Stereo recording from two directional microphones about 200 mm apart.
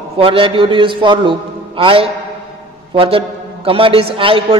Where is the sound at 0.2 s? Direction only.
25° right (ahead or behind).